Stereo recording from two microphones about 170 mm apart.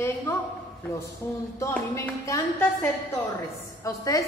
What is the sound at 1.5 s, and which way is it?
A woman's voice, 15° left (ahead or behind).